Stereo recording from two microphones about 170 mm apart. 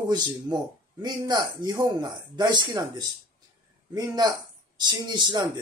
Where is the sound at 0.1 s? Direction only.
25° right (ahead or behind).